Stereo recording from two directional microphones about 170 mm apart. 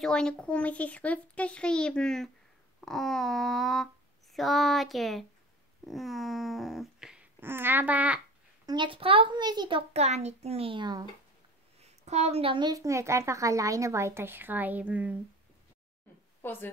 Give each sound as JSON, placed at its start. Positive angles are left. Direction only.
{"t": 0.0, "sound": "speech", "side_deg": 5}
{"t": 5.9, "sound": "a sound", "side_deg": 0}
{"t": 8.6, "sound": "a child's voice", "side_deg": -30}
{"t": 11.8, "sound": "a woman's voice", "side_deg": -40}
{"t": 16.4, "sound": "a woman's voice", "side_deg": 10}